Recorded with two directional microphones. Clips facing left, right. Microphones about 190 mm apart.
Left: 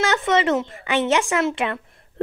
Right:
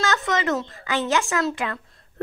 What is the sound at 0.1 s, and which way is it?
Speech, 25° left (ahead or behind).